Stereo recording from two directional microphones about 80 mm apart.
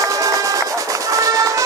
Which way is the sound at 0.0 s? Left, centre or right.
Right.